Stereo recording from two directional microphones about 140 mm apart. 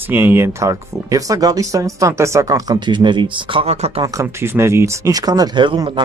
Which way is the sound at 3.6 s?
50° right (ahead or behind).